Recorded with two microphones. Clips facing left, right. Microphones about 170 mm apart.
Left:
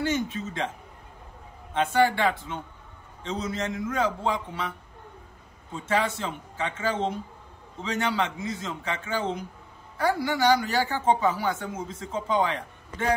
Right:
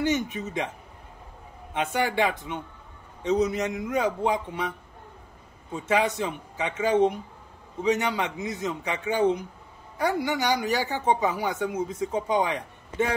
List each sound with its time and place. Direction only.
0.0 s speech: 15° right (ahead or behind)
1.7 s speech: 15° right (ahead or behind)
5.9 s speech: 15° right (ahead or behind)